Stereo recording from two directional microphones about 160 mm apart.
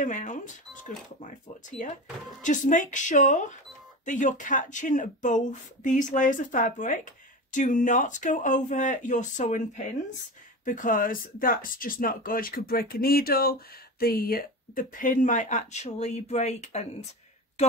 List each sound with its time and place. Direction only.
0.0 s speech: 50° left (ahead or behind)
1.8 s speech: 55° left (ahead or behind)